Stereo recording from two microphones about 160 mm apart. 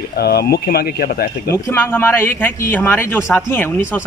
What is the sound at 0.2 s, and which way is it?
Speech, 85° left.